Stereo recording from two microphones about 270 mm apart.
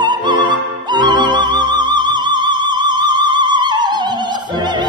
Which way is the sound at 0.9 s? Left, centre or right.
Centre.